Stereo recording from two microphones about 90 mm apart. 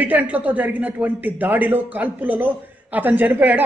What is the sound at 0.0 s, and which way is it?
A man's voice, 15° right (ahead or behind).